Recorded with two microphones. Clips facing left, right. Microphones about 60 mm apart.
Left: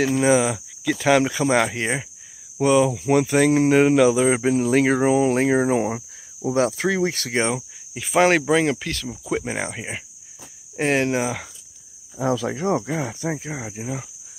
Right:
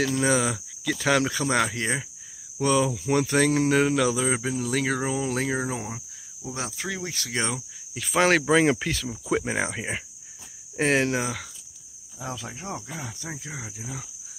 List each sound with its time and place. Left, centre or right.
0.0 s speech: centre; by 5.8 s left
5.8 s cricket: left
6.5 s speech: left
7.3 s speech: left
7.9 s speech: centre
8.6 s speech: centre
12.2 s speech: left